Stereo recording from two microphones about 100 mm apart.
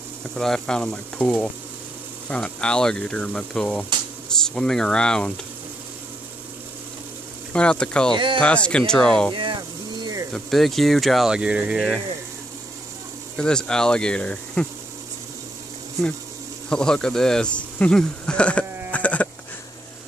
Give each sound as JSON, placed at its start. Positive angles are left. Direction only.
{"t": 0.4, "sound": "speech", "side_deg": 5}
{"t": 7.5, "sound": "speech", "side_deg": 10}
{"t": 8.1, "sound": "speech", "side_deg": -55}
{"t": 8.4, "sound": "speech", "side_deg": 10}
{"t": 9.3, "sound": "vehicle", "side_deg": -55}
{"t": 10.3, "sound": "speech", "side_deg": 0}
{"t": 13.4, "sound": "speech", "side_deg": 10}
{"t": 16.6, "sound": "speech", "side_deg": 10}